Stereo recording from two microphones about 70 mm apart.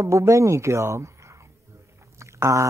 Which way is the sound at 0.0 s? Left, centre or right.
Right.